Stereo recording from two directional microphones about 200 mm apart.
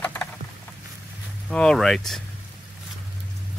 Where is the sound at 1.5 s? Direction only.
5° left (ahead or behind).